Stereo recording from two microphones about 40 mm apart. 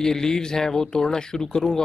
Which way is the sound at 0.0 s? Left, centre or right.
Centre.